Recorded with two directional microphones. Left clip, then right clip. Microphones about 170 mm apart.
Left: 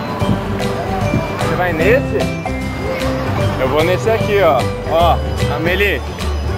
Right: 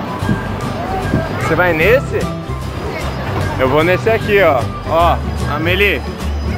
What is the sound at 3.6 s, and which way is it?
Speech, 30° right (ahead or behind).